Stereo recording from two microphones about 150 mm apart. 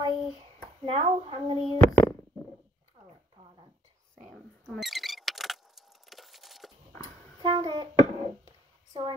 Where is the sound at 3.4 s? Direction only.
30° right (ahead or behind).